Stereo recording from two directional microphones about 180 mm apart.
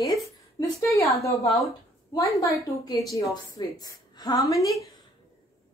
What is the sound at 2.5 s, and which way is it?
A woman's voice, 20° left (ahead or behind).